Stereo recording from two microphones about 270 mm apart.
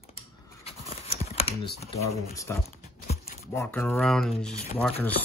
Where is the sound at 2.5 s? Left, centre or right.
Centre.